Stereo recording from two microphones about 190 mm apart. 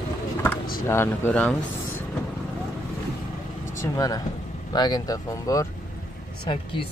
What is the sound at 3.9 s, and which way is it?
Speech, 20° left (ahead or behind).